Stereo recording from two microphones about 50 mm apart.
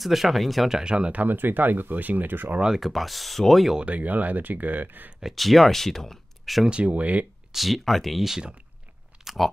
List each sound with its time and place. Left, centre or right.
0.0 s speech: centre
1.1 s speech: right
2.6 s speech: centre
3.7 s speech: right
5.2 s speech: centre
6.7 s speech: right
7.5 s speech: centre
9.2 s a sound: centre